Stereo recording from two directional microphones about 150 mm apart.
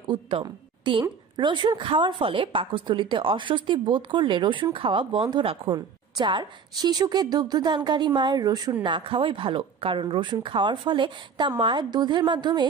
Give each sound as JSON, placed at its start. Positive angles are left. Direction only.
{"t": 0.1, "sound": "a woman's voice", "side_deg": -35}